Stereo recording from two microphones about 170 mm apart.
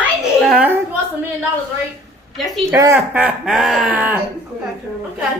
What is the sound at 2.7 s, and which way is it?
A woman's voice, 15° right (ahead or behind).